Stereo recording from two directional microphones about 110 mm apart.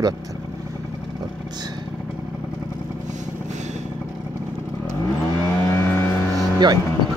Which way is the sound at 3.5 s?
90° right.